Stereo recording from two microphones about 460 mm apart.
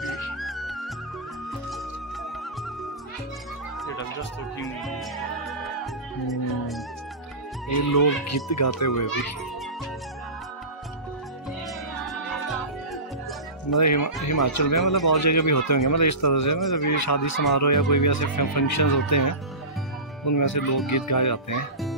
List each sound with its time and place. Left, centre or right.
0.0 s music: centre
7.9 s speech: left
12.1 s music: centre
13.7 s speech: left